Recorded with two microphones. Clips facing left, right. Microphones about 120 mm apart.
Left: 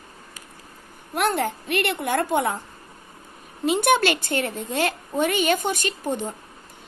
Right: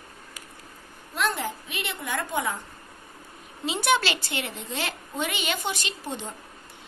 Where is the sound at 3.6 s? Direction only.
55° left (ahead or behind).